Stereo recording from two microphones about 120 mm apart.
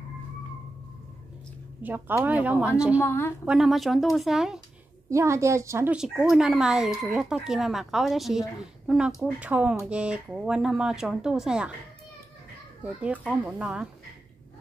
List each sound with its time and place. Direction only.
1.8 s speech: 15° right (ahead or behind)
3.0 s a woman's voice: 20° left (ahead or behind)
3.4 s speech: centre (ahead or behind)
5.1 s a woman's voice: 25° right (ahead or behind)
5.9 s speech: 5° right (ahead or behind)
12.8 s speech: 10° right (ahead or behind)